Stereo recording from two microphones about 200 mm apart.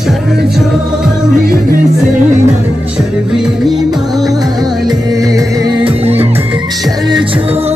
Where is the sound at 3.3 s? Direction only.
5° right (ahead or behind).